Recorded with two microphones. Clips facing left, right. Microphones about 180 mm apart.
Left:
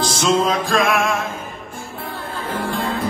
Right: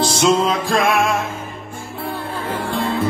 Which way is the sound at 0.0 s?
25° right (ahead or behind).